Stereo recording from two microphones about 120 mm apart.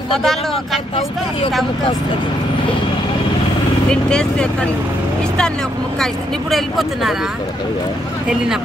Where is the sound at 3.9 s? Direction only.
5° left (ahead or behind).